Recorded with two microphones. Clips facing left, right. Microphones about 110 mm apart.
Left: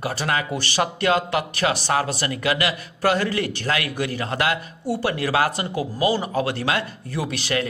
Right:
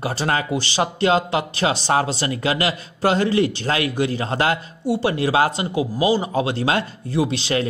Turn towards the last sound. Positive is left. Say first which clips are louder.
# right 4 dB
turn(degrees=-25)  # may be behind; listen again after turning